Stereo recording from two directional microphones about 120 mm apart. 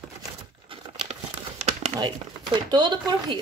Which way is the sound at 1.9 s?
35° right (ahead or behind).